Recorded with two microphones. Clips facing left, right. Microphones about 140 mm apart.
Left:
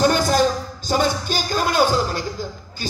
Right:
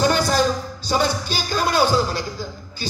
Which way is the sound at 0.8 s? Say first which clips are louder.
Left 1 dB; 45° left (ahead or behind).